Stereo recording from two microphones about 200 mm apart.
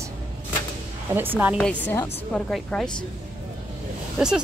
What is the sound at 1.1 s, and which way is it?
Speech, 10° right (ahead or behind).